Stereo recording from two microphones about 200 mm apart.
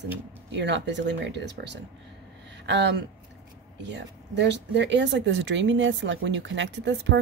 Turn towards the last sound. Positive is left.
turn(degrees=-65)  # may be behind; listen again after turning